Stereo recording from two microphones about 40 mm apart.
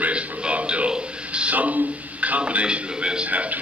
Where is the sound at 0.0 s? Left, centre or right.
Right.